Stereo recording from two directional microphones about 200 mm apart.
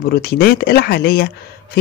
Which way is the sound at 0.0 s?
50° left (ahead or behind).